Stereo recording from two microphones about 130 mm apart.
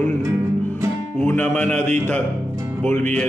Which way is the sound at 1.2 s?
15° left (ahead or behind).